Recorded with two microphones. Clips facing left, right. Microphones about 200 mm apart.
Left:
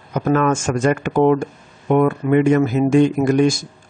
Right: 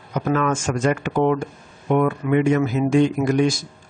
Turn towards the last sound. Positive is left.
turn(degrees=50)  # may be behind; listen again after turning